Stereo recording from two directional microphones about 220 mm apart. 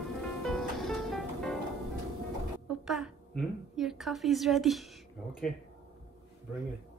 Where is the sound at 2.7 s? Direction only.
Centre (ahead or behind).